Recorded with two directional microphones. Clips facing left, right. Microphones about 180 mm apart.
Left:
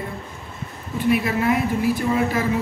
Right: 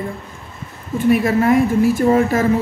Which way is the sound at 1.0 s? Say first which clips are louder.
Right 5 dB; 45° right (ahead or behind).